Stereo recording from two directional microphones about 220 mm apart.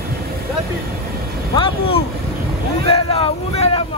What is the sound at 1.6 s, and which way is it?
Speech, 25° left (ahead or behind).